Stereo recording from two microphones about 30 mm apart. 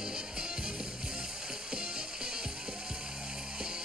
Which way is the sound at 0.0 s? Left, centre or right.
Right.